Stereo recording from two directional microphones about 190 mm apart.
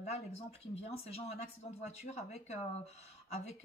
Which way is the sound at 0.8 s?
35° left (ahead or behind).